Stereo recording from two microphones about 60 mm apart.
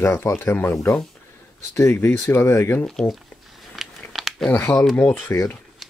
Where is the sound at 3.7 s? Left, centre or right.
Centre.